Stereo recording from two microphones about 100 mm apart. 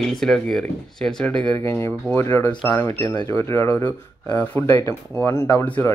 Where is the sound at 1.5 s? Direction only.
25° left (ahead or behind).